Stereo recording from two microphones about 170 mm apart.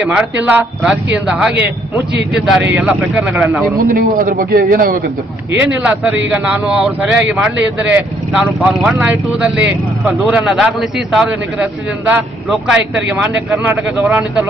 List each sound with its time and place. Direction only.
0.0 s a man's voice: 5° right (ahead or behind)
3.9 s a man's voice: 55° right (ahead or behind)
5.6 s a man's voice: 10° right (ahead or behind)